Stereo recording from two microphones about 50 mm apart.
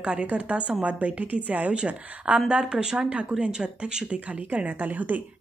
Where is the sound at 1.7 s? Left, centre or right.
Right.